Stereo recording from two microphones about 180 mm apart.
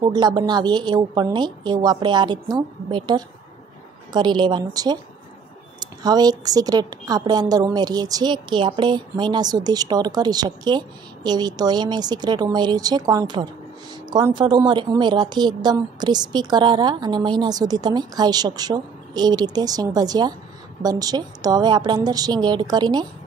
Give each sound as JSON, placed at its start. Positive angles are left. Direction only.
{"t": 0.0, "sound": "a woman's voice", "side_deg": -25}